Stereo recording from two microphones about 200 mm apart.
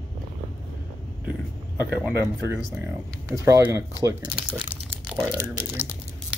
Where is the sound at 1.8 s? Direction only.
5° right (ahead or behind); by 4.8 s 25° right (ahead or behind).